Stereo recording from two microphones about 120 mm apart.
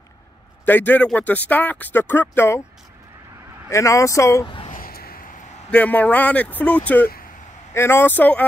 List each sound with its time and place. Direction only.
0.7 s speech: 15° left (ahead or behind)
3.7 s speech: 25° left (ahead or behind)
5.7 s speech: 10° left (ahead or behind)